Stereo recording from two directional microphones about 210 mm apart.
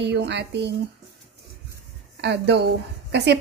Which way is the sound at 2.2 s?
55° right (ahead or behind).